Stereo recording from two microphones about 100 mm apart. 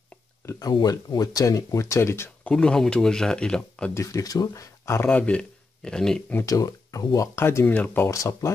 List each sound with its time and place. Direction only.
0.5 s speech: 40° left (ahead or behind)
2.5 s speech: 5° left (ahead or behind)
3.9 s speech: 30° left (ahead or behind)
5.0 s speech: 15° left (ahead or behind)
6.4 s speech: 35° left (ahead or behind)
7.3 s speech: 25° left (ahead or behind)
8.1 s speech: 35° left (ahead or behind)